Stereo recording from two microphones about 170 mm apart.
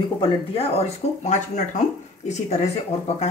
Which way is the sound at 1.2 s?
45° left (ahead or behind).